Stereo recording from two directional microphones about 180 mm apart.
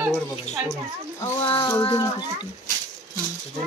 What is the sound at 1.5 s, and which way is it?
Speech, 30° left (ahead or behind).